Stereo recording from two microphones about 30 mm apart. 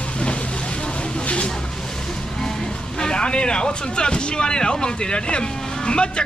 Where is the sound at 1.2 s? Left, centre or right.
Left.